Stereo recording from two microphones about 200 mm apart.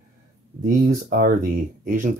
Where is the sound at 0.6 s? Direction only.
45° right (ahead or behind).